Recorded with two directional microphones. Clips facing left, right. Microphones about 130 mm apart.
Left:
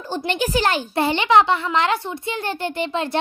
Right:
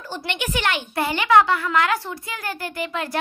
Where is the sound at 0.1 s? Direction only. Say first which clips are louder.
Left 5 dB; 30° left (ahead or behind).